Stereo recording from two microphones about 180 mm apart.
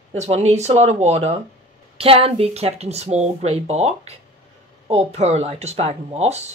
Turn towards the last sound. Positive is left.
turn(degrees=-35)  # may be behind; listen again after turning